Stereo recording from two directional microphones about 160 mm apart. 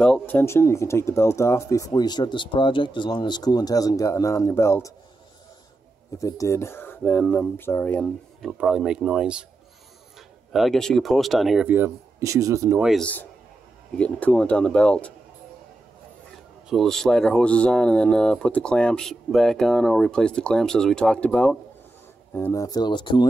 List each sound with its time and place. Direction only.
0.0 s speech: 10° left (ahead or behind)
6.1 s speech: 20° left (ahead or behind)
8.4 s speech: 5° right (ahead or behind)
10.5 s speech: centre (ahead or behind); by 12.8 s 20° right (ahead or behind)
12.8 s speech: 5° left (ahead or behind)
16.6 s speech: centre (ahead or behind); by 23.2 s 30° left (ahead or behind)